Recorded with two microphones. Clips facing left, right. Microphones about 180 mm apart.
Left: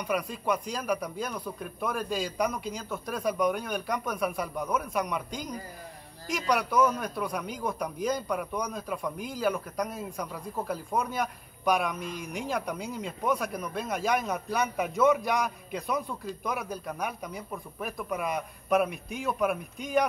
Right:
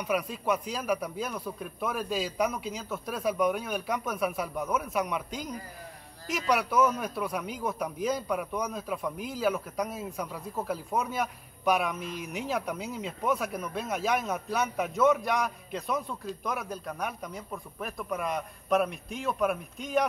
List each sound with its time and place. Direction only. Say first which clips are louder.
0.0 s speech: even; 5° right (ahead or behind)